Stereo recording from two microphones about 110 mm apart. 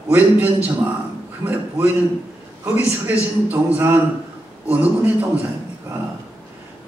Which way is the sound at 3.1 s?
15° right (ahead or behind).